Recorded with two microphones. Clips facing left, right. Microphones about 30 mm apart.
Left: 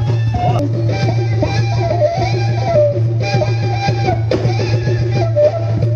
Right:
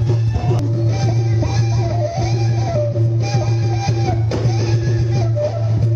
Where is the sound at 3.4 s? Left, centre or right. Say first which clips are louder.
Left 4 dB; left.